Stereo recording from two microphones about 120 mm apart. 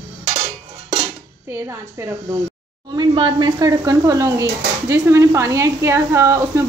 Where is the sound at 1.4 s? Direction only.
20° right (ahead or behind).